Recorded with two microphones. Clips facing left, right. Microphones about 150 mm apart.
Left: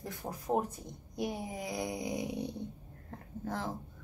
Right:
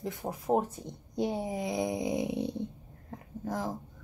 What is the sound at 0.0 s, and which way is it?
Speech, 20° right (ahead or behind).